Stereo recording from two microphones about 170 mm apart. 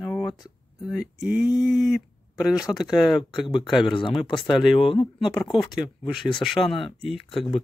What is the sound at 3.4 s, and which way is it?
Speech, 30° left (ahead or behind).